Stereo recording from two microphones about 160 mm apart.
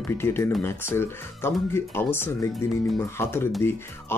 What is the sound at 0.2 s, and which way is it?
Speech, 15° left (ahead or behind).